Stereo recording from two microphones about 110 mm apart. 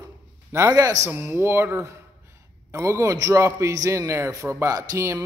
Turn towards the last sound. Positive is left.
turn(degrees=-25)  # may be behind; listen again after turning